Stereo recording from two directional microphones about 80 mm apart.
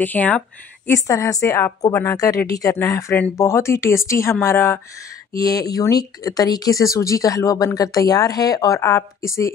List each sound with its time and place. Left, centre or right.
0.0 s speech: left
0.8 s speech: left
5.3 s speech: left